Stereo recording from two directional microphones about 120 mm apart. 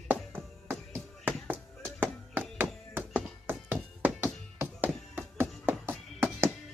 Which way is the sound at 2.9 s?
15° right (ahead or behind).